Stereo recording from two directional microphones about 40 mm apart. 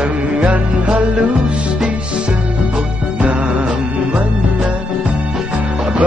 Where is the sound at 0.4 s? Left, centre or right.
Right.